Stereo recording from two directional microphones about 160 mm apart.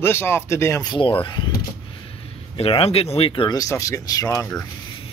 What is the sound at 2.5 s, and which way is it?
Speech, 40° left (ahead or behind).